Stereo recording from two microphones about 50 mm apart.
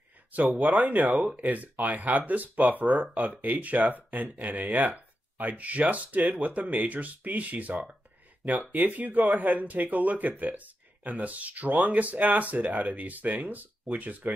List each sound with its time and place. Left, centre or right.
0.6 s speech: right